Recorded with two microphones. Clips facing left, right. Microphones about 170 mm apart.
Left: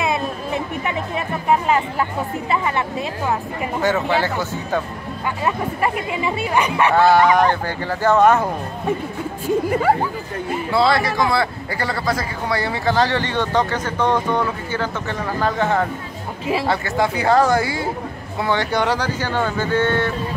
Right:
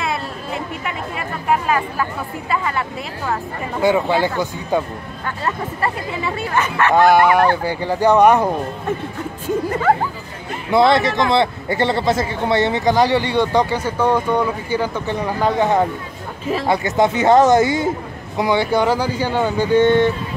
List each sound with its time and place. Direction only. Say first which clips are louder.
3.8 s speech: right 4 dB; 15° right (ahead or behind)
5.4 s speech: left 1 dB; 15° left (ahead or behind)
6.9 s speech: right 2 dB; 15° right (ahead or behind)
9.7 s speech: right 1 dB; 10° left (ahead or behind)
10.7 s speech: right 4 dB; 20° right (ahead or behind)